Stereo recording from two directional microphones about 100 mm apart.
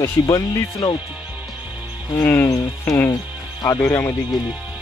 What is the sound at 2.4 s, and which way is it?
Speech, 30° left (ahead or behind).